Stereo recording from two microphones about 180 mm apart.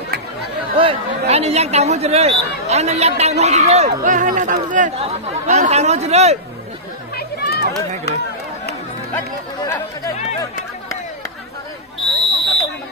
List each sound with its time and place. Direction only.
0.7 s speech: 35° right (ahead or behind)
7.2 s a sound: 60° left (ahead or behind)
9.7 s chatter: 15° left (ahead or behind)
12.1 s fire alarm: centre (ahead or behind)